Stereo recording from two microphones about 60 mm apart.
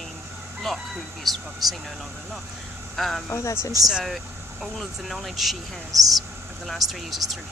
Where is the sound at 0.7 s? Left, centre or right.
Centre.